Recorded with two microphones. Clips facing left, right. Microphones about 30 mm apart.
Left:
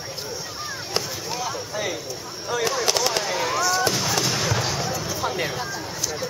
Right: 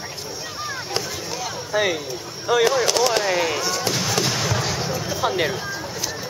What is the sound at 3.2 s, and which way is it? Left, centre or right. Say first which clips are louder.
Speech: right 4 dB; right.